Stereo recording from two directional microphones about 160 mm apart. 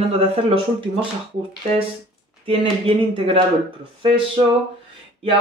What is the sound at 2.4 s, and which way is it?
Speech, 35° right (ahead or behind).